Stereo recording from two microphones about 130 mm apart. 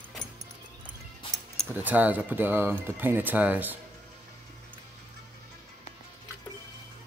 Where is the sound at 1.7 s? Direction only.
15° right (ahead or behind).